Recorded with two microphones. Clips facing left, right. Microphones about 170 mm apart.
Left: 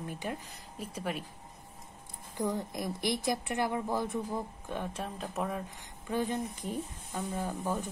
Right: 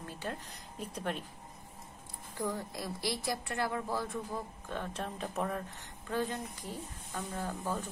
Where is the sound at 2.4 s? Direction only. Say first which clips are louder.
Left 4 dB; 20° left (ahead or behind); by 5.6 s 5° left (ahead or behind).